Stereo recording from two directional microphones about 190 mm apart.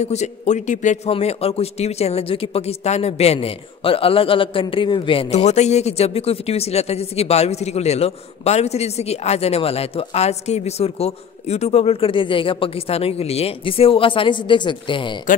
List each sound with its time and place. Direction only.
0.0 s a man's voice: 35° left (ahead or behind)